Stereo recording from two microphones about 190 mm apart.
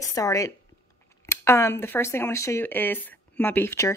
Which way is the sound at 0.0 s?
15° left (ahead or behind).